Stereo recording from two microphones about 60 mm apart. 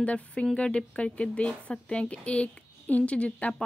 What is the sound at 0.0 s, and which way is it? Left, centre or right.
A woman's voice, centre.